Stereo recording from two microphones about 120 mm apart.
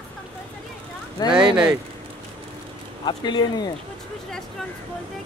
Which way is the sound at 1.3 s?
5° right (ahead or behind).